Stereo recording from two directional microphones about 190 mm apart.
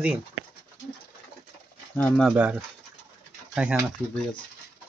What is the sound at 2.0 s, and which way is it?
Speech, 10° left (ahead or behind).